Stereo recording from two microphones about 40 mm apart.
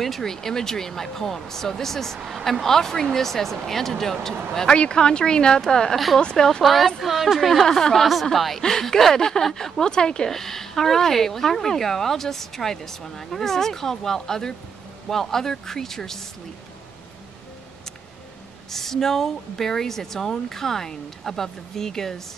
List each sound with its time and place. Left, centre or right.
0.0 s speech: centre
2.1 s speech: centre
2.4 s speech: centre
6.6 s a woman's voice: centre
18.7 s speech: centre